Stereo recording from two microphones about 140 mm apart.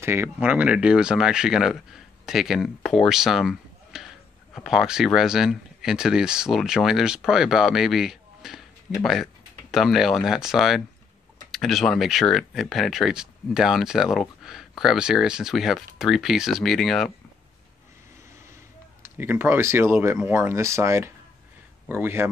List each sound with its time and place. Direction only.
0.0 s speech: 15° right (ahead or behind); by 17.1 s centre (ahead or behind)
19.1 s speech: 15° right (ahead or behind)